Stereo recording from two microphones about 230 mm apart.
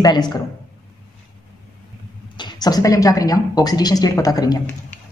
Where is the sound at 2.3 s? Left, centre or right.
Centre.